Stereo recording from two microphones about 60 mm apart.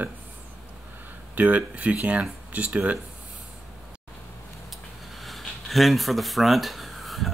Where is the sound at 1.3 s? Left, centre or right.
Right.